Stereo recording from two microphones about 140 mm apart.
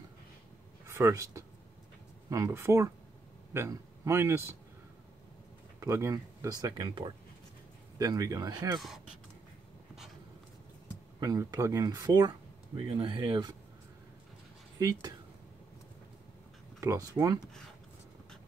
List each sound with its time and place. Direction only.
0.8 s speech: 20° right (ahead or behind)
5.8 s speech: 20° right (ahead or behind)
11.1 s speech: 25° right (ahead or behind)
14.8 s speech: 25° right (ahead or behind)
16.8 s speech: 20° right (ahead or behind)